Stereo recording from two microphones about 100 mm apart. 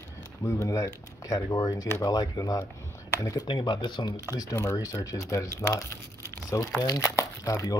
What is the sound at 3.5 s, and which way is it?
Speech, 50° left (ahead or behind).